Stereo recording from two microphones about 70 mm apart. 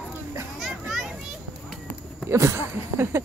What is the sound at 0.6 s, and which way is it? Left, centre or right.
Children playing, centre.